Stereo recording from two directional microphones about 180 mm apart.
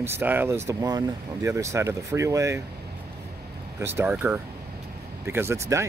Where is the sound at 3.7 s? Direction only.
15° right (ahead or behind).